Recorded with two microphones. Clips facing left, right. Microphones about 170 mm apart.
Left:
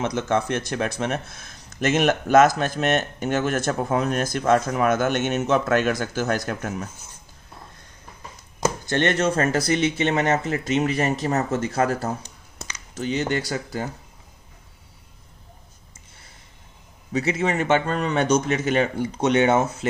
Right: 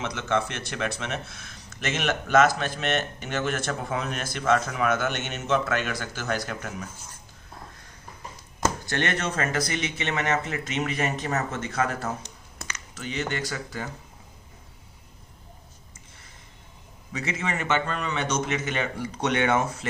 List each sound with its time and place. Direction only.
0.0 s speech: 40° left (ahead or behind)
9.0 s speech: 40° left (ahead or behind)
12.2 s a sound: 10° left (ahead or behind)
12.9 s speech: 30° left (ahead or behind)
17.1 s speech: 30° left (ahead or behind)